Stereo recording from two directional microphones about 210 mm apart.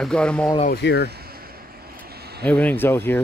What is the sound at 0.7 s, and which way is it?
Speech, 50° left (ahead or behind).